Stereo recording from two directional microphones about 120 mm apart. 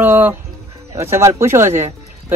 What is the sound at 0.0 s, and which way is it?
Speech, 15° right (ahead or behind).